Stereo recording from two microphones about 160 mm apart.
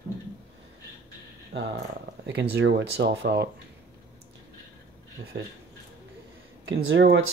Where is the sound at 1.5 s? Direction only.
75° right (ahead or behind).